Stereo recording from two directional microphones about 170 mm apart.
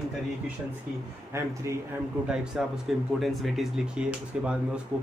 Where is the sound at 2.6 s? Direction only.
5° right (ahead or behind).